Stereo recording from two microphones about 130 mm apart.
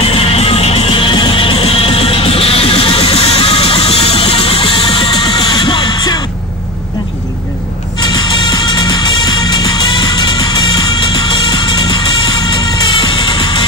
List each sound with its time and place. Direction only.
0.0 s music: 50° left (ahead or behind); by 6.1 s 30° left (ahead or behind)
8.0 s music: 30° left (ahead or behind)